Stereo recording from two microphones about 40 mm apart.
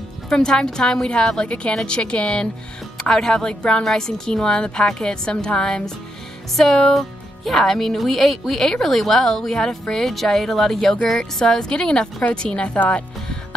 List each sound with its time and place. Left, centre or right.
0.3 s a woman's voice: centre
3.0 s a woman's voice: centre
3.4 s a woman's voice: left
6.5 s a woman's voice: centre; by 13.6 s left